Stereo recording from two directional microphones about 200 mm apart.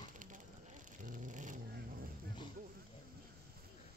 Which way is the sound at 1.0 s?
40° right (ahead or behind).